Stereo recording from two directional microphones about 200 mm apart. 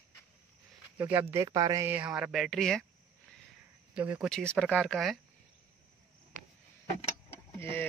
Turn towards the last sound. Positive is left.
turn(degrees=10)  # may be behind; listen again after turning